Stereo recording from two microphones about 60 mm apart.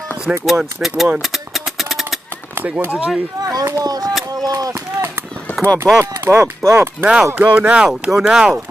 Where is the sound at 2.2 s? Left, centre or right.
Right.